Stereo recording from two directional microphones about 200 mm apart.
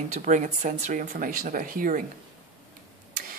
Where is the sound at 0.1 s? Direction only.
40° right (ahead or behind).